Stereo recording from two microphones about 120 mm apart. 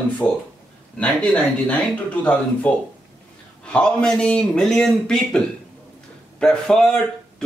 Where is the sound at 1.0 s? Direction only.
10° left (ahead or behind).